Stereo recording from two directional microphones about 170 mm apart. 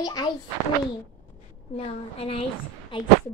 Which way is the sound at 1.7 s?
35° left (ahead or behind).